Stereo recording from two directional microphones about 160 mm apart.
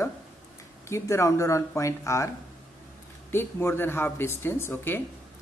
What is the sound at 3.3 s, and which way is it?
Speech, 15° left (ahead or behind).